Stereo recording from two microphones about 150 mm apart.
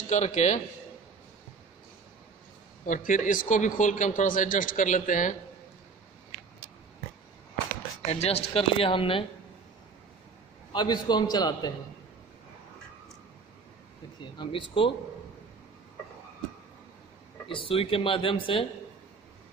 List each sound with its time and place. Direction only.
0.1 s a man's voice: 50° left (ahead or behind)
2.9 s a man's voice: 60° left (ahead or behind)
8.1 s speech: 45° left (ahead or behind)
10.7 s a man's voice: 30° left (ahead or behind)
14.4 s speech: 35° left (ahead or behind)
17.5 s speech: 35° left (ahead or behind)